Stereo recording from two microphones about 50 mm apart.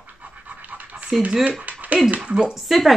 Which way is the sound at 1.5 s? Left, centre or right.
Right.